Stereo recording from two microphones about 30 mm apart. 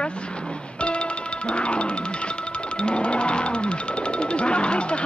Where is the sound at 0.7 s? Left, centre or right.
Left.